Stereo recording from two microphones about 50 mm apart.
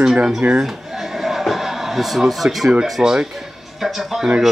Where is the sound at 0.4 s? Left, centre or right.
Right.